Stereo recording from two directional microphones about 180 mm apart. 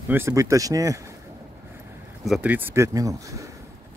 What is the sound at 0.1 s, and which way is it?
Speech, 15° right (ahead or behind).